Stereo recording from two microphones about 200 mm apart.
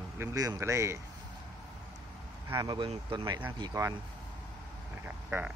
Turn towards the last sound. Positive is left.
turn(degrees=-10)  # may be behind; listen again after turning